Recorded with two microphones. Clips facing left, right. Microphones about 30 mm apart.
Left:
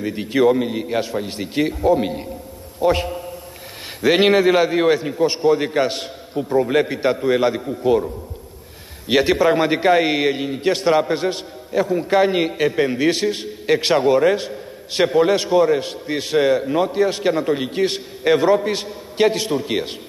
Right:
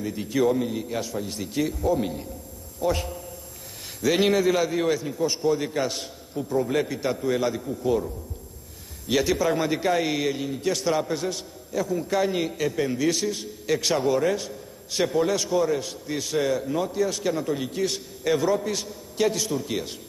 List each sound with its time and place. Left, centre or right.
0.0 s a man's voice: left